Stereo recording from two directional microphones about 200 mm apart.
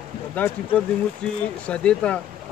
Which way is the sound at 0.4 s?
10° left (ahead or behind).